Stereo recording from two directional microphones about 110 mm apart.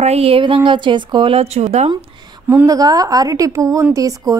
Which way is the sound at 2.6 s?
35° right (ahead or behind).